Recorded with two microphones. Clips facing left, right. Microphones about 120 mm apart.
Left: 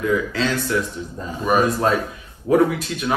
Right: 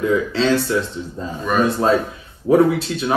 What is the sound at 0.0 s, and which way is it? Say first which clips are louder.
A man's voice: right 3 dB; 30° right (ahead or behind).